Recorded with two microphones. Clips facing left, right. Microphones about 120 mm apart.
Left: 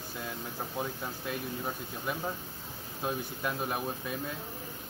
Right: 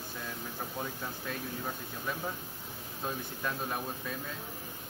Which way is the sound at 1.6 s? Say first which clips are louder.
Left 2 dB; 15° left (ahead or behind).